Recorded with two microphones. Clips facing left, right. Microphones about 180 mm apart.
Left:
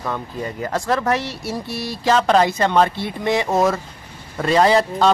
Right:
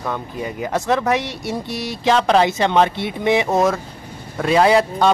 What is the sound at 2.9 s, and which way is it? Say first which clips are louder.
Speech: right 3 dB; 20° right (ahead or behind).